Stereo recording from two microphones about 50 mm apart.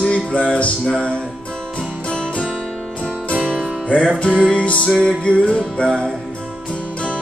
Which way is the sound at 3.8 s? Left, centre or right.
Left.